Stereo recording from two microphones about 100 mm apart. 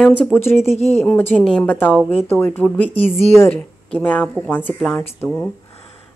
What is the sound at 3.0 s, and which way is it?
Speech, 90° left.